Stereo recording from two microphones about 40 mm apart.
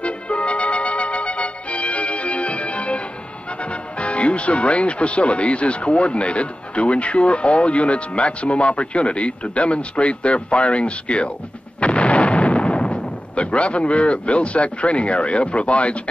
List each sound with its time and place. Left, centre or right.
0.0 s music: left
3.6 s speech: left
11.8 s artillery fire: left